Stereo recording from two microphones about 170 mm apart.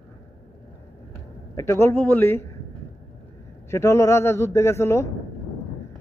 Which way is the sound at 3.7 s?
15° left (ahead or behind).